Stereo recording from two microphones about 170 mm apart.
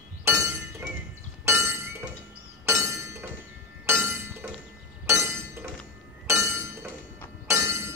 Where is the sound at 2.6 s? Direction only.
15° right (ahead or behind).